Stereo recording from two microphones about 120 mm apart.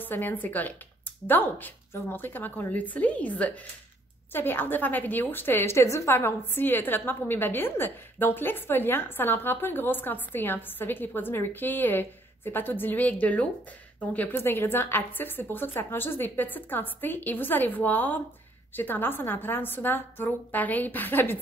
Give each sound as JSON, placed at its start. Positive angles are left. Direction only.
{"t": 0.0, "sound": "a woman's voice", "side_deg": 15}